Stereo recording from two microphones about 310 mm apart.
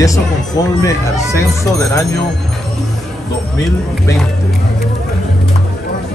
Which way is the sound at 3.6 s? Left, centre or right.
Centre.